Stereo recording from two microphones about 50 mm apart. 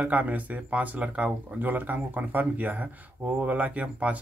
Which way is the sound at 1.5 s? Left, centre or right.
Right.